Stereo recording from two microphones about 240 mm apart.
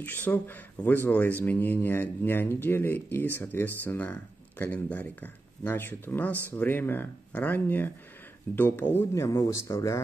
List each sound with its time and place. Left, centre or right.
0.0 s speech: centre